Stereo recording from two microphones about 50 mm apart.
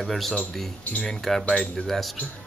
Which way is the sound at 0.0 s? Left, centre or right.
Centre.